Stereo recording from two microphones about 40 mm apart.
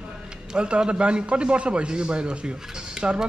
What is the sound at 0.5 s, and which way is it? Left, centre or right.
A man's voice, right.